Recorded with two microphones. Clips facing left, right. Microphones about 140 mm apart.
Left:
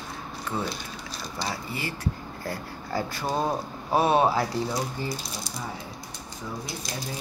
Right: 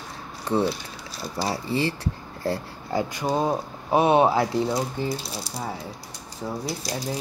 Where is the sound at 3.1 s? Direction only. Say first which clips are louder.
Right 3 dB; 15° right (ahead or behind).